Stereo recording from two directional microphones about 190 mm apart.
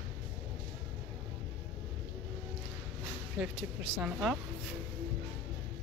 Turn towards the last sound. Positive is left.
turn(degrees=-5)  # may be behind; listen again after turning